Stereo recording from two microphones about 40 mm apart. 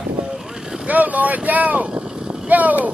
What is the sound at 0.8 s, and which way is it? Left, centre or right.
Speech, right.